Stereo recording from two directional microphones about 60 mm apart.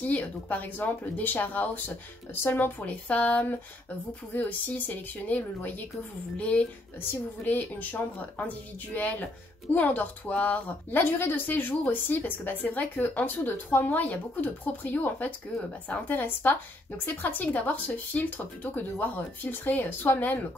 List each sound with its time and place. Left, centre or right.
0.0 s a woman's voice: left
2.9 s a woman's voice: left